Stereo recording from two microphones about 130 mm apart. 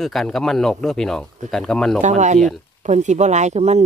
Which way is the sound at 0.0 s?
Centre (ahead or behind).